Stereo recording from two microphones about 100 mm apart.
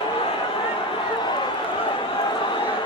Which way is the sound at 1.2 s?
50° left (ahead or behind).